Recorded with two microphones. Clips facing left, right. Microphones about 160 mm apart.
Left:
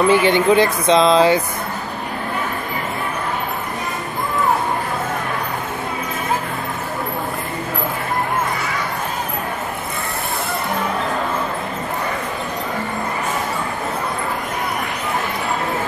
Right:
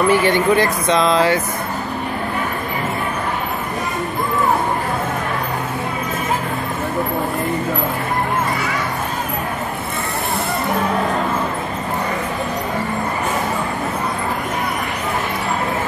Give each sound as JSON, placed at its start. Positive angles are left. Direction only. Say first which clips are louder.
{"t": 0.1, "sound": "speech", "louder": "left 1 dB", "side_deg": 20}